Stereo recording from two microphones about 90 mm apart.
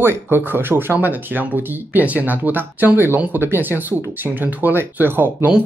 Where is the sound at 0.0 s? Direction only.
25° right (ahead or behind).